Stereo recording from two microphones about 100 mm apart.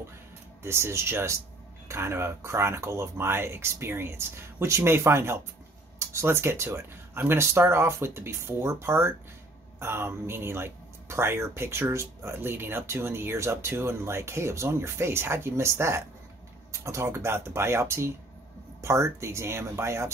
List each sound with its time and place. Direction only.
0.7 s speech: 25° right (ahead or behind)